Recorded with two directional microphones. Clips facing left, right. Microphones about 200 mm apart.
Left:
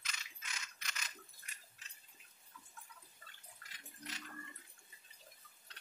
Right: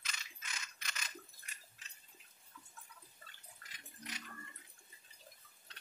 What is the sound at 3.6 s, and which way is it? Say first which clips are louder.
Toilet flush: right 1 dB; 40° right (ahead or behind).